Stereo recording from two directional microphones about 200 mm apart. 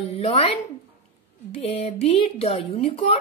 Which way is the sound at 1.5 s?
30° left (ahead or behind).